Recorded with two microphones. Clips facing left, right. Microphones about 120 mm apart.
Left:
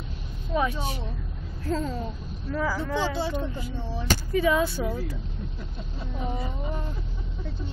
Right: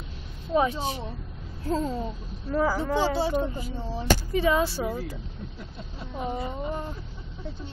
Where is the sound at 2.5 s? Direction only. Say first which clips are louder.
Right 3 dB; 35° right (ahead or behind).